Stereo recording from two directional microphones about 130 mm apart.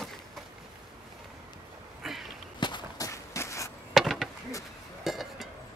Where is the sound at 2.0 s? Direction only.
Centre (ahead or behind).